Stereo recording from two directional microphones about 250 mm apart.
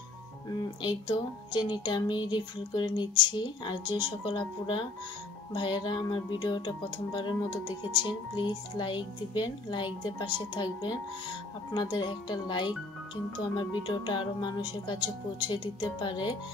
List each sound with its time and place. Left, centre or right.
0.8 s speech: centre